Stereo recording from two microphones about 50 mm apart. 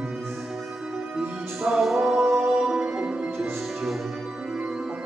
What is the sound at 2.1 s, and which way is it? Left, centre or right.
Music, centre.